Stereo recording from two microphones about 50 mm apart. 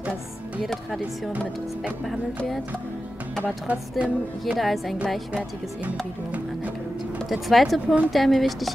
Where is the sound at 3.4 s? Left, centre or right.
Right.